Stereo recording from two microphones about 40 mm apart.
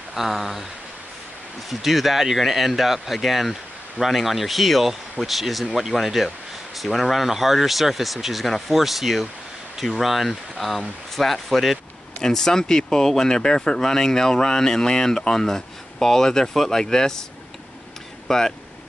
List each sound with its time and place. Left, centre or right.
0.1 s speech: centre
1.7 s speech: centre
12.2 s speech: centre
18.3 s speech: centre